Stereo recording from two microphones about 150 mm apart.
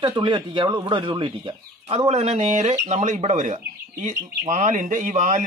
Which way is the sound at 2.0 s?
45° right (ahead or behind).